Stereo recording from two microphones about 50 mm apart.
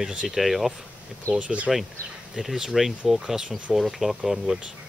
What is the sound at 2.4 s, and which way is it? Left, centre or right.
Speech, centre.